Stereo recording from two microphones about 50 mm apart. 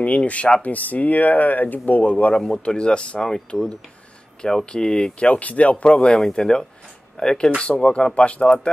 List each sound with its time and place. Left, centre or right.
0.0 s speech: left
2.3 s speech: centre
3.3 s speech: centre